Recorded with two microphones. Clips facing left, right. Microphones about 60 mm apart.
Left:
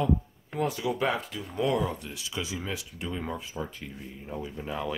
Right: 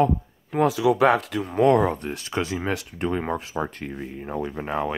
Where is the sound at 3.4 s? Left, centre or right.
Right.